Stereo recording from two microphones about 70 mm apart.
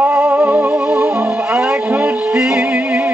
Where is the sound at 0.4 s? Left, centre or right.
Right.